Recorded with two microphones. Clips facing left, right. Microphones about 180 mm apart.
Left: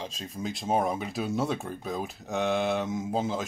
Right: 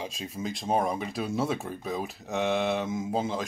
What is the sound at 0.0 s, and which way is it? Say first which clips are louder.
Speech: right 1 dB; 10° right (ahead or behind).